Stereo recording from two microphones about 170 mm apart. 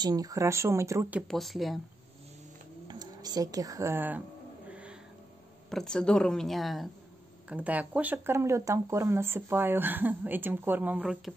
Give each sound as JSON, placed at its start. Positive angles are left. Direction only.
{"t": 0.0, "sound": "speech", "side_deg": -20}
{"t": 1.2, "sound": "speech", "side_deg": 0}
{"t": 2.9, "sound": "speech", "side_deg": -25}
{"t": 4.6, "sound": "a sound", "side_deg": -5}
{"t": 5.7, "sound": "speech", "side_deg": 5}